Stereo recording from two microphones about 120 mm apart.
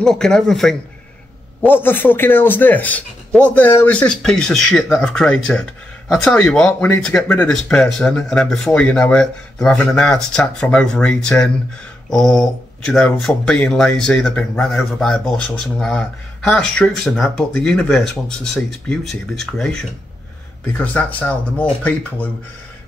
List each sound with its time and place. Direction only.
0.0 s speech: 5° left (ahead or behind)
1.7 s speech: 15° left (ahead or behind)